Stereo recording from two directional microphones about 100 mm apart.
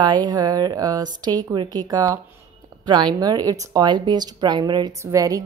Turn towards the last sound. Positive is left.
turn(degrees=-35)  # may be behind; listen again after turning